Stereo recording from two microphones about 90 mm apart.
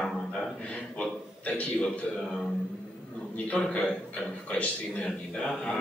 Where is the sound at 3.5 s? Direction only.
10° left (ahead or behind).